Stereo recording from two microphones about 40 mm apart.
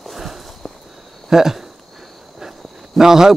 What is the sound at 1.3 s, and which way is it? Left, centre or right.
Speech, centre.